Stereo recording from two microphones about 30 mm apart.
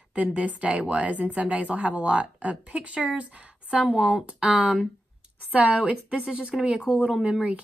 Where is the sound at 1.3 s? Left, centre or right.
Right.